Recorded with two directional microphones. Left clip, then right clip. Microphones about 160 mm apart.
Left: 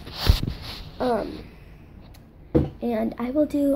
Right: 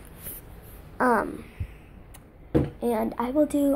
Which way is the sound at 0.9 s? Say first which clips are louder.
Right 2 dB; 75° right (ahead or behind).